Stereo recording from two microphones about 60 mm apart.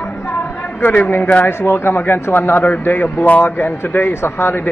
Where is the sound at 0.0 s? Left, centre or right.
Left.